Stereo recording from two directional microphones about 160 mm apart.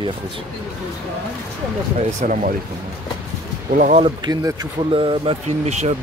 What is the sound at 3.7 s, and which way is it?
Speech, 55° right (ahead or behind).